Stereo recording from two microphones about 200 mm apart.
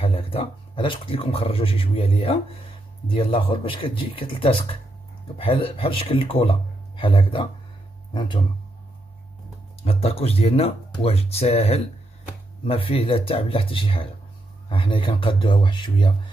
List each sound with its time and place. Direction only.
0.0 s speech: 30° left (ahead or behind)
9.8 s speech: 30° left (ahead or behind)